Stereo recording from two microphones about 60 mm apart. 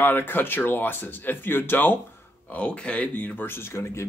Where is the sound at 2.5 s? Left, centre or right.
Centre; by 4.1 s left.